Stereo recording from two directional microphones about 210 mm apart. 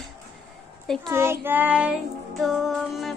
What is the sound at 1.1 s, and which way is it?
Child singing, 10° right (ahead or behind).